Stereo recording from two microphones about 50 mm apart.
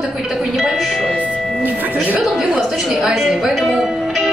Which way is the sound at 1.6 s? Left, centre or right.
Right.